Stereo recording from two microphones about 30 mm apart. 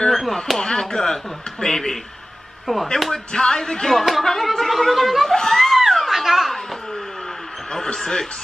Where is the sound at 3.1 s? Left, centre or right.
Left.